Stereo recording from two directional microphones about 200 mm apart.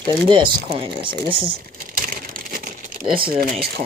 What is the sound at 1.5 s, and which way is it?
Crumpling, 45° right (ahead or behind).